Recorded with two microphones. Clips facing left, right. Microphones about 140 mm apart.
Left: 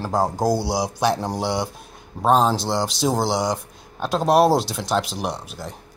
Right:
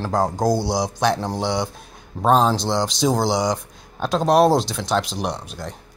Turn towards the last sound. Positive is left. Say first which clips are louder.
# right 1 dB
turn(degrees=5)  # may be behind; listen again after turning